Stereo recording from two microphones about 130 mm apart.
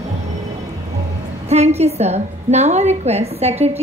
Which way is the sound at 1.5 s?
55° right (ahead or behind).